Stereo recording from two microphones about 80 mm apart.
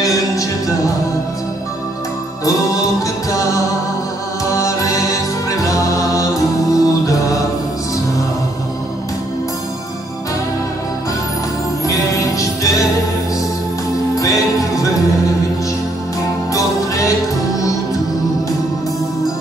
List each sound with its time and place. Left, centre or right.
0.0 s music: left
2.4 s music: left
11.8 s music: left
14.2 s music: left
16.5 s music: left